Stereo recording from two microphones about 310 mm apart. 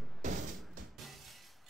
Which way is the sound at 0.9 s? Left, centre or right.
Centre.